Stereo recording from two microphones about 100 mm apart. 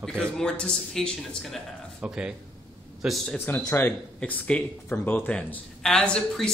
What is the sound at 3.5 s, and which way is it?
A woman's voice, 20° left (ahead or behind).